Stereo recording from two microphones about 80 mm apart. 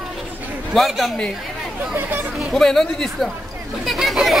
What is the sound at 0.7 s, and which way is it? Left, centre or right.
Speech, centre.